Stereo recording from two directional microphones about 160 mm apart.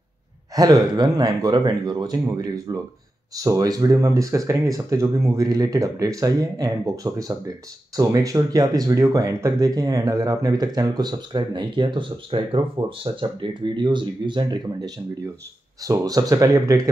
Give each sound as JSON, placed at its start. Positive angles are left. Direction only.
{"t": 0.6, "sound": "speech", "side_deg": -25}